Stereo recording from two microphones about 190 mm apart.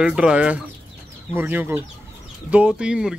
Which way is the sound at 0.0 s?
5° right (ahead or behind).